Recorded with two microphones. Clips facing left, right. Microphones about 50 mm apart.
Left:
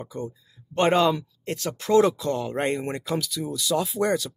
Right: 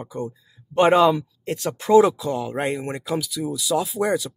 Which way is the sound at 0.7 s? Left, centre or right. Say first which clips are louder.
Right 5 dB; centre.